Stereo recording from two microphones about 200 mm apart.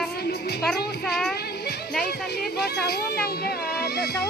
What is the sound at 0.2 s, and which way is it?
Music, 55° left (ahead or behind).